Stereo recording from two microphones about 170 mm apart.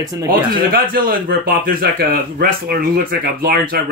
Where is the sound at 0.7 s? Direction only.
55° right (ahead or behind).